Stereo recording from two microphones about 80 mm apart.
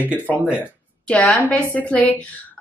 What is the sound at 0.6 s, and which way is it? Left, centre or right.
A woman's voice, centre.